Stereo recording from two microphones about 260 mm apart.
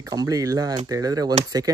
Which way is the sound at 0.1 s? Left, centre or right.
Centre.